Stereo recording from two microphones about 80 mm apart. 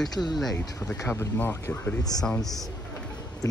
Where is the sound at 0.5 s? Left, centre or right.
Centre.